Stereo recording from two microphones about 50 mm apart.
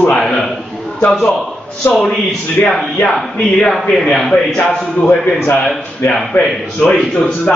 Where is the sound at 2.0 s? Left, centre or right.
Left.